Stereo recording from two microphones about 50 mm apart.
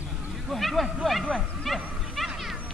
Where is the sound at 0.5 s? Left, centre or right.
Centre.